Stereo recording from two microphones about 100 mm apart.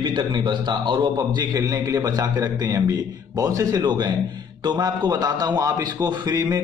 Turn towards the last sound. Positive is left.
turn(degrees=-40)  # may be behind; listen again after turning